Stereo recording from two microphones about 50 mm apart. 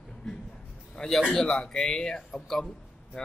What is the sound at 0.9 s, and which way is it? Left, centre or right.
A man's voice, centre.